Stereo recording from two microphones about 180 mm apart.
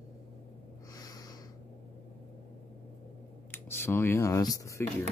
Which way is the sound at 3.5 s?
10° left (ahead or behind).